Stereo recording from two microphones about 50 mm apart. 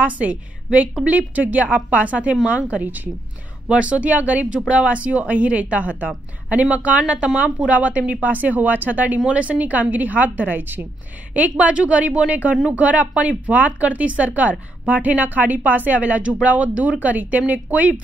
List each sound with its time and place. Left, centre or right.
0.0 s a woman's voice: right
3.6 s a woman's voice: right
11.3 s a woman's voice: right